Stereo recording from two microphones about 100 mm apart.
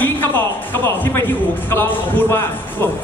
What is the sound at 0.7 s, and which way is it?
A man's voice, 20° left (ahead or behind).